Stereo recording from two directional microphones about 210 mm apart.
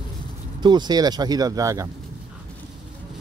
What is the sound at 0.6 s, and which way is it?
Speech, 20° right (ahead or behind).